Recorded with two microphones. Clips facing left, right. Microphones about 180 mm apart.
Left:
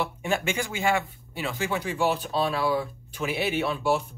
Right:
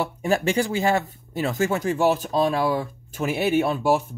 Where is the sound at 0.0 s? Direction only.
40° right (ahead or behind).